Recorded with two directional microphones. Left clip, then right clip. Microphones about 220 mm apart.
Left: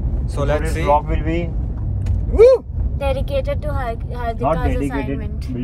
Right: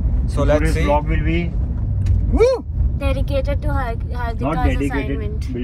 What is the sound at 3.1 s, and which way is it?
Speech, 15° left (ahead or behind).